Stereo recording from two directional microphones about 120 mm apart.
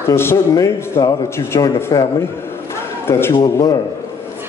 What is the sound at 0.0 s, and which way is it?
A man's voice, 20° left (ahead or behind).